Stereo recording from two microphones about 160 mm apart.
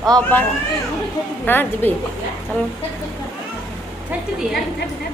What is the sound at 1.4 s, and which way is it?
Speech, 10° left (ahead or behind).